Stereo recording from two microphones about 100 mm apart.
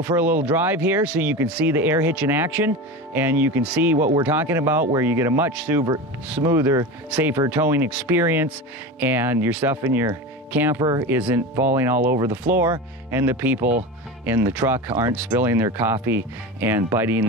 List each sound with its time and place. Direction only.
0.0 s speech: 20° right (ahead or behind)
6.4 s speech: 25° right (ahead or behind)